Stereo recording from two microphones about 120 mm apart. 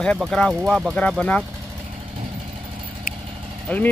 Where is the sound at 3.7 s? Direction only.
15° left (ahead or behind).